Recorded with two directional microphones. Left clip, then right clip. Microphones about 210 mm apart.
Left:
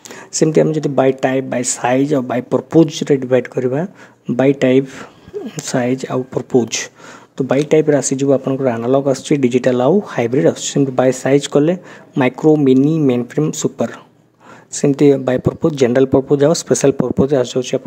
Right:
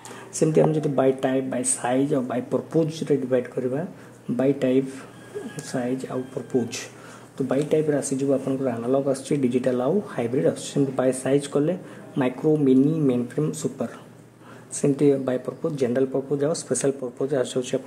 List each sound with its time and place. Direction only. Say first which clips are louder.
0.3 s speech: left 7 dB; 25° left (ahead or behind)